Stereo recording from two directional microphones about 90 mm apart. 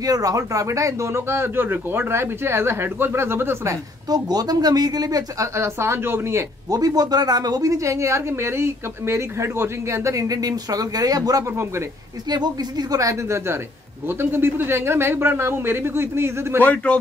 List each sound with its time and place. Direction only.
0.0 s speech: 40° right (ahead or behind)
4.1 s speech: 45° right (ahead or behind)
5.5 s speech: 30° right (ahead or behind)
6.7 s a woman's voice: 45° right (ahead or behind); by 16.6 s 30° right (ahead or behind)
16.6 s a man's voice: 15° left (ahead or behind)